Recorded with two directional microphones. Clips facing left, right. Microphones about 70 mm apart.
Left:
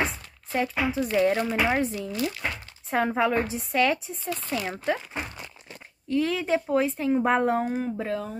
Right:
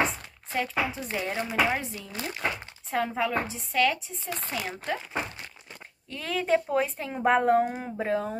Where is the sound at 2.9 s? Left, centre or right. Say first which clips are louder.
Left 4 dB; centre.